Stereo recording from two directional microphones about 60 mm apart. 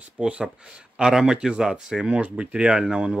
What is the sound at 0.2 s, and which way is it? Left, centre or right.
Speech, centre.